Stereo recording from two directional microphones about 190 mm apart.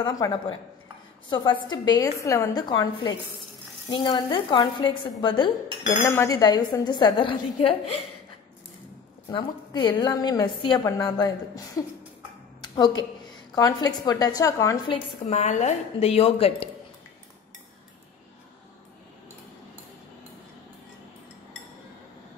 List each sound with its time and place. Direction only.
0.0 s a woman's voice: 20° left (ahead or behind)
9.3 s a woman's voice: 25° left (ahead or behind)
12.6 s a woman's voice: 20° left (ahead or behind)
14.9 s a woman's voice: 35° left (ahead or behind)